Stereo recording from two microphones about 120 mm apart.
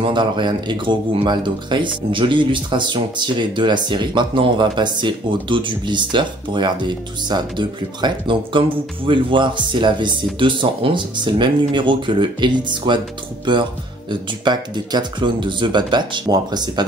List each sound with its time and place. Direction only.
0.0 s speech: 40° right (ahead or behind)